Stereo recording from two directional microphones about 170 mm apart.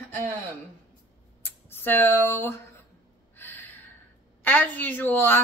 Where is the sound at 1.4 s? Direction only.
10° left (ahead or behind).